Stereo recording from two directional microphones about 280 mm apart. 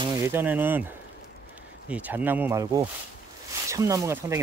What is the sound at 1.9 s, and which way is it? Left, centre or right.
Speech, centre.